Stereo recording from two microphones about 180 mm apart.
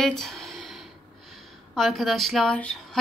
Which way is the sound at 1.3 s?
Centre (ahead or behind).